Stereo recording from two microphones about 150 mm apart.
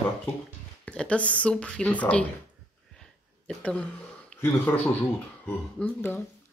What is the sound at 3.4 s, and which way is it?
A woman's voice, 5° left (ahead or behind).